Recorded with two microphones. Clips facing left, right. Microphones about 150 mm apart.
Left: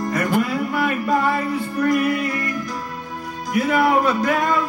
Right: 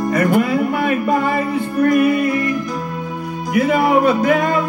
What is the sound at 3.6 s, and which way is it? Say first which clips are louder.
Music: right 3 dB; 55° right (ahead or behind).